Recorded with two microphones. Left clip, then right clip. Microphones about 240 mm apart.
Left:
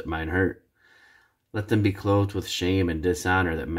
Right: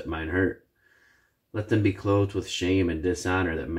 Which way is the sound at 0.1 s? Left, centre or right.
Left.